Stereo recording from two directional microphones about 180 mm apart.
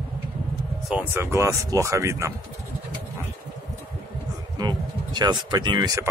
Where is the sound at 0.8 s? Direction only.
10° right (ahead or behind).